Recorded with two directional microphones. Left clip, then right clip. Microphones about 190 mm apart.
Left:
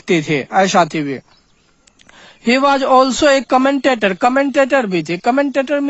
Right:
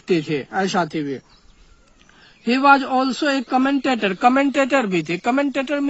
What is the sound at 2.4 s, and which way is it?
Speech, 45° left (ahead or behind).